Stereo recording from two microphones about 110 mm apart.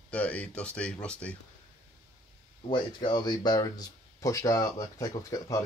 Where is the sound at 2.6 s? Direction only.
45° left (ahead or behind).